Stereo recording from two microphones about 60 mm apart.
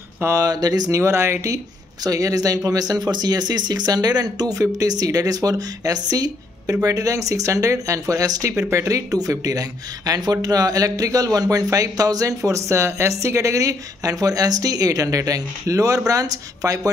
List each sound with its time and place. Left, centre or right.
0.4 s speech: right
1.0 s speech: right
2.0 s speech: right
6.7 s speech: right
8.5 s speech: right
8.8 s speech: right
12.4 s speech: right
16.1 s speech: right